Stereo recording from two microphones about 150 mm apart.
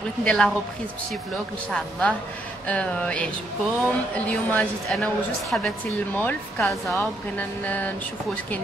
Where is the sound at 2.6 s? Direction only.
10° left (ahead or behind).